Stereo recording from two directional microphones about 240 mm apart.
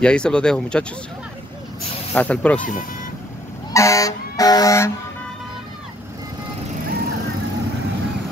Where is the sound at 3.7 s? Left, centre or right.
Centre.